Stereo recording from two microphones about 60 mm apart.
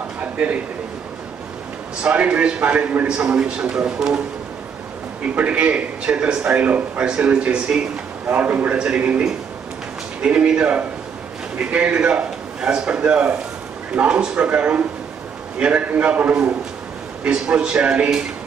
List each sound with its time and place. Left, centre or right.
2.0 s a man's voice: right
3.2 s speech: centre
5.3 s a man's voice: right